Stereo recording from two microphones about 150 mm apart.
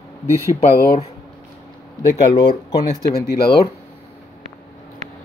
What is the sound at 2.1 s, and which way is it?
Speech, 25° left (ahead or behind).